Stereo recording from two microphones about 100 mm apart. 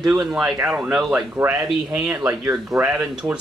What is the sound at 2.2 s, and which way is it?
Speech, 30° right (ahead or behind).